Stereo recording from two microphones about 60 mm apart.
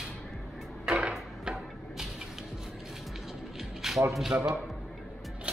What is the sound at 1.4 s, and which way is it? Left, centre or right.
Music, centre.